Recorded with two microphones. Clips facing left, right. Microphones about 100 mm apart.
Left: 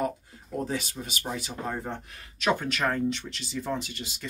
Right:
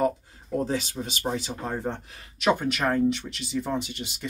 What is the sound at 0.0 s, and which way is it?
Speech, 25° right (ahead or behind).